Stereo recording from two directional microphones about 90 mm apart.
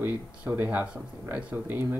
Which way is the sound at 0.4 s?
15° right (ahead or behind).